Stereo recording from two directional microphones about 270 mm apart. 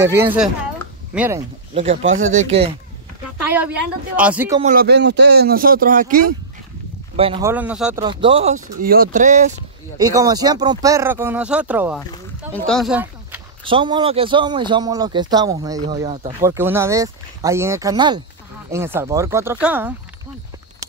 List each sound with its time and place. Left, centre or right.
0.0 s speech: centre
1.7 s speech: right
2.0 s speech: right
2.3 s speech: right
3.4 s speech: centre
4.6 s speech: right
7.4 s speech: centre
8.0 s speech: centre
9.9 s speech: centre
13.7 s speech: centre
16.1 s speech: right
16.3 s speech: centre